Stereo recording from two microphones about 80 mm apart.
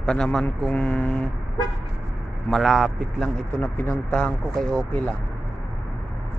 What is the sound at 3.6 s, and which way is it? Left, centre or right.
Speech, left.